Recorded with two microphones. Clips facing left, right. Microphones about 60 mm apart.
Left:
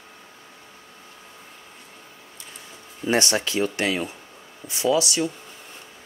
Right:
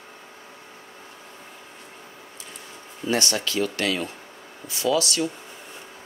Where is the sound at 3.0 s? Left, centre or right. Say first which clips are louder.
Left 2 dB; left.